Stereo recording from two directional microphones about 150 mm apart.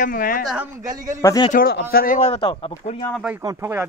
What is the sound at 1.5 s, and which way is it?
Speech, 80° left.